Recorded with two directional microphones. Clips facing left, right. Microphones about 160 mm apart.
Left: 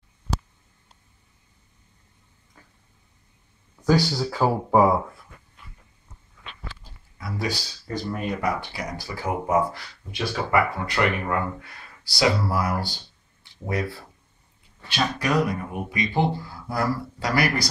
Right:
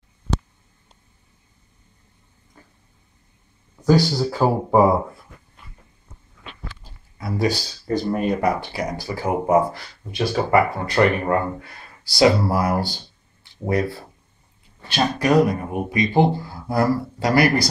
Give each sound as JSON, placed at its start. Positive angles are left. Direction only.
{"t": 3.9, "sound": "speech", "side_deg": -10}
{"t": 7.2, "sound": "speech", "side_deg": -35}